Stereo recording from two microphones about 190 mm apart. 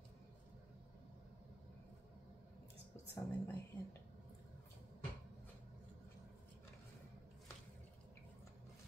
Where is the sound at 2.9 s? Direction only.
15° left (ahead or behind).